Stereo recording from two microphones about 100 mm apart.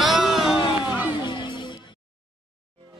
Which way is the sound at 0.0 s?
5° right (ahead or behind).